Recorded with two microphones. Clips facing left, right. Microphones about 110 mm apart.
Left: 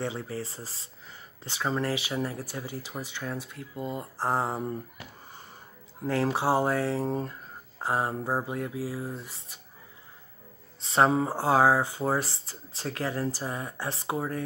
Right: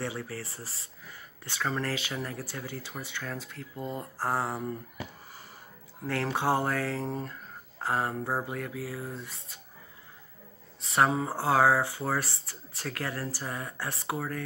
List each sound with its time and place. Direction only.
0.0 s speech: 20° left (ahead or behind)
6.3 s speech: 15° left (ahead or behind)
10.8 s speech: 30° left (ahead or behind)
11.2 s speech: 15° left (ahead or behind)